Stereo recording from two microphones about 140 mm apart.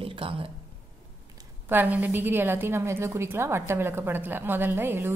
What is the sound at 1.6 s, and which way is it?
A woman's voice, 15° right (ahead or behind).